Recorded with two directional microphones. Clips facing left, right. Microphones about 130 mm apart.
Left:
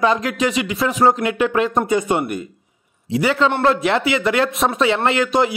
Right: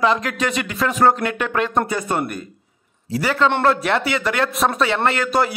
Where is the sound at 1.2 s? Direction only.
25° left (ahead or behind).